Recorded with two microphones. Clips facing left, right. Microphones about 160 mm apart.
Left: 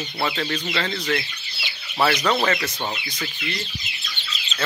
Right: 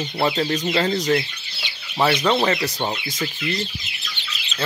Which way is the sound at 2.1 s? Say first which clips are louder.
Right 2 dB; 25° right (ahead or behind).